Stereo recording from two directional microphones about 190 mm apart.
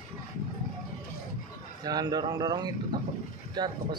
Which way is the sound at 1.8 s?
20° right (ahead or behind).